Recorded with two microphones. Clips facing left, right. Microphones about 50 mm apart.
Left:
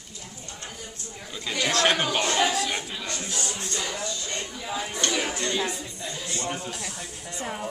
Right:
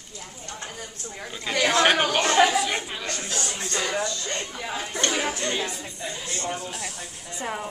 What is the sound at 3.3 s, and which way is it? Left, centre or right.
Speech, right.